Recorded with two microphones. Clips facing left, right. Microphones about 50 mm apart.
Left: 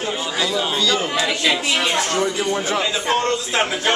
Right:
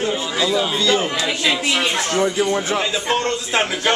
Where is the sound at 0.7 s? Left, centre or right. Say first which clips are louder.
Right 2 dB; right.